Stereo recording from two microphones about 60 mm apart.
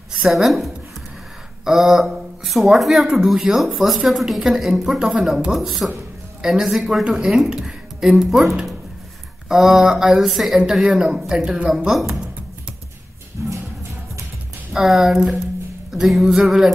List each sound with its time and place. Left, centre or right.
0.3 s speech: centre
9.5 s speech: centre
13.4 s music: right
14.7 s speech: centre